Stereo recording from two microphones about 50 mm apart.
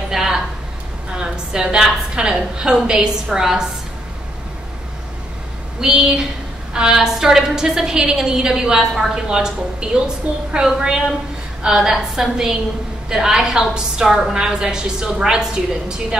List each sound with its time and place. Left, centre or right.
0.1 s a sound: centre
2.1 s a woman's voice: centre
5.8 s a woman's voice: centre